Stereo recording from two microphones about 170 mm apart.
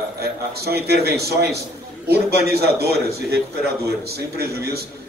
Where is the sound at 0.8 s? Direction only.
70° right (ahead or behind).